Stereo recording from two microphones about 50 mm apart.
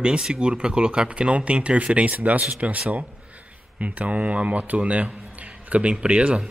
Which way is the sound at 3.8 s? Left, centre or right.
Right.